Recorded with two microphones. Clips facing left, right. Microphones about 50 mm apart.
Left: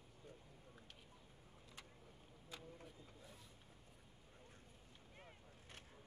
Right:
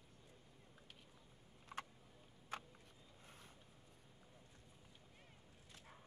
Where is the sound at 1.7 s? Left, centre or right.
Right.